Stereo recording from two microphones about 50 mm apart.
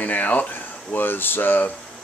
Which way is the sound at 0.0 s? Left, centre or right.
Left.